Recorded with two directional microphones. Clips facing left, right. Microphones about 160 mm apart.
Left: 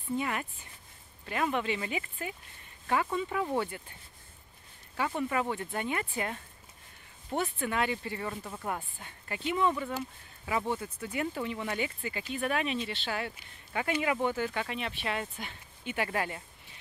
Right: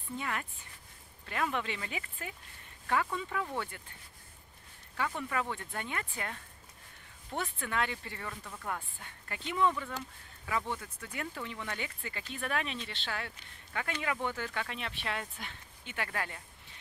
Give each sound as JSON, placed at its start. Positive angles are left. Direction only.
{"t": 0.2, "sound": "speech", "side_deg": 10}
{"t": 5.3, "sound": "speech", "side_deg": 15}
{"t": 7.3, "sound": "speech", "side_deg": 10}
{"t": 8.3, "sound": "speech", "side_deg": 25}
{"t": 9.0, "sound": "speech", "side_deg": 5}
{"t": 10.6, "sound": "speech", "side_deg": 30}
{"t": 11.0, "sound": "speech", "side_deg": 10}